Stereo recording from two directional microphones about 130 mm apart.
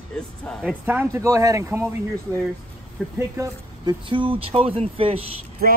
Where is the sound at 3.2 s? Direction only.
25° right (ahead or behind).